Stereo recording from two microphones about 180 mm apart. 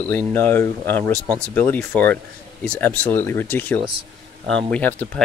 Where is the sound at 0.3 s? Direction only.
10° left (ahead or behind).